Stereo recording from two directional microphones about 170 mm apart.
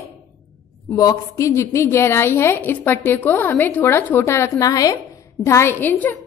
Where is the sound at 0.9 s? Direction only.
20° left (ahead or behind).